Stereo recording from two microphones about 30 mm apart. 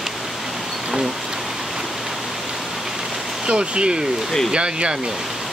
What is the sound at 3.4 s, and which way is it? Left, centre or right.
Speech, right.